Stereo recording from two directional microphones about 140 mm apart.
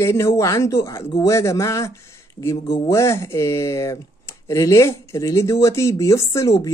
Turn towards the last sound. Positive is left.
turn(degrees=25)  # may be behind; listen again after turning